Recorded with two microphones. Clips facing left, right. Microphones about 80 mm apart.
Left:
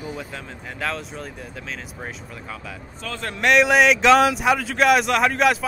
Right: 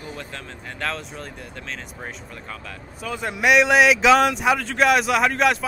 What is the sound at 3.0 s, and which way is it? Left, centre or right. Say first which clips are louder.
Speech: right 1 dB; centre.